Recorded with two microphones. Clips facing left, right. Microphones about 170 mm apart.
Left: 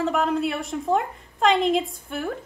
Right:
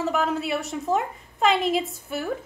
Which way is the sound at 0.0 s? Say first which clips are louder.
Left 2 dB; centre (ahead or behind).